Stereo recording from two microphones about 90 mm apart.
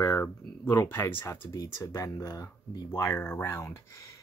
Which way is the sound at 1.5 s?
40° left (ahead or behind).